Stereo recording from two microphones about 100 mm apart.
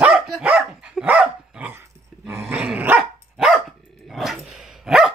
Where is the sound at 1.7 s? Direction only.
25° right (ahead or behind).